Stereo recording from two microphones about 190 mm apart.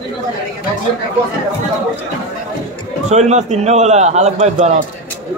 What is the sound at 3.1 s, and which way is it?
A man's voice, 35° right (ahead or behind).